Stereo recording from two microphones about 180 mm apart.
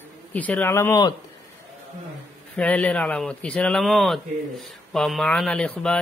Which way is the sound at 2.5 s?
5° left (ahead or behind).